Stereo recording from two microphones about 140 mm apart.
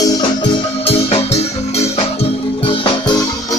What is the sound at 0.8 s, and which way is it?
Music, 45° left (ahead or behind).